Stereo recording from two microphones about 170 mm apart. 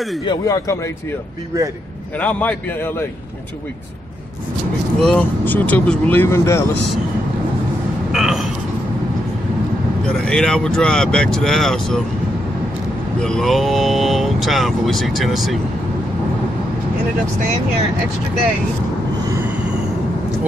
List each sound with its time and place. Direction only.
0.2 s a man's voice: 25° left (ahead or behind)
2.1 s speech: 10° left (ahead or behind)
5.0 s speech: 10° left (ahead or behind)
8.1 s a sound: 5° right (ahead or behind)
10.0 s speech: 5° left (ahead or behind)
13.2 s speech: 5° left (ahead or behind)